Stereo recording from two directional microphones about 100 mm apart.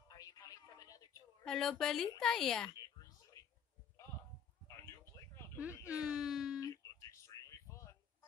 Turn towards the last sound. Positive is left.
turn(degrees=30)  # may be behind; listen again after turning